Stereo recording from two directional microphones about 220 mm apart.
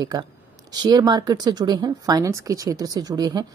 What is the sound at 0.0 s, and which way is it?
Speech, 20° right (ahead or behind).